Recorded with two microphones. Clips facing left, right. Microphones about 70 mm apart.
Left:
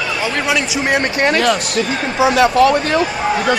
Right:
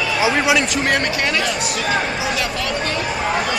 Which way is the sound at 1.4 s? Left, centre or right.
Left.